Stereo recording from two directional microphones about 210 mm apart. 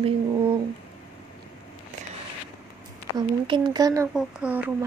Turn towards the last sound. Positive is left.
turn(degrees=-5)  # may be behind; listen again after turning